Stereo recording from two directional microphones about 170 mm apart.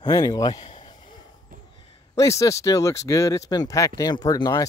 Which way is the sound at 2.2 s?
20° left (ahead or behind).